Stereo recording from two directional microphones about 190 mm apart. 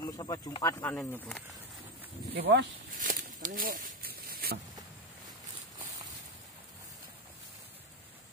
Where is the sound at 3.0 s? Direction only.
45° right (ahead or behind).